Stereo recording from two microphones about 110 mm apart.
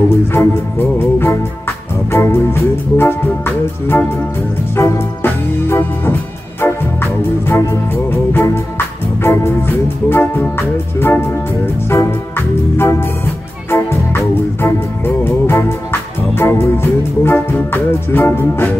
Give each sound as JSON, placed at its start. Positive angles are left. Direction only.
{"t": 0.3, "sound": "music", "side_deg": 20}
{"t": 4.7, "sound": "organ", "side_deg": 25}
{"t": 6.6, "sound": "music", "side_deg": 20}
{"t": 11.0, "sound": "organ", "side_deg": 20}
{"t": 13.7, "sound": "music", "side_deg": 25}